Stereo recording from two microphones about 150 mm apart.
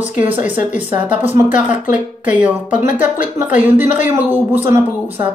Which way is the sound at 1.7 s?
55° left (ahead or behind).